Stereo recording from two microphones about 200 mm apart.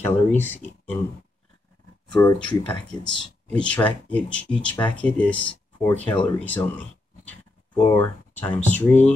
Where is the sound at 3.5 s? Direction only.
5° left (ahead or behind).